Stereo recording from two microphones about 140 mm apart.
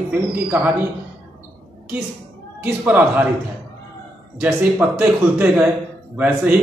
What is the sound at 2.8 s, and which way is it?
Speech, 10° right (ahead or behind).